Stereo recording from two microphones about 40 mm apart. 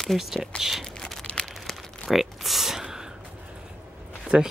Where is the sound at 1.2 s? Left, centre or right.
Left.